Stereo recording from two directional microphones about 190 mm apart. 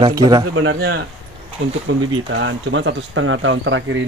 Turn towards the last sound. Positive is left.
turn(degrees=-75)  # may be behind; listen again after turning